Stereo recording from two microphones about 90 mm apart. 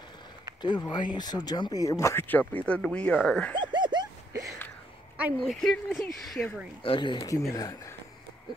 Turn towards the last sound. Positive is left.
turn(degrees=45)  # may be behind; listen again after turning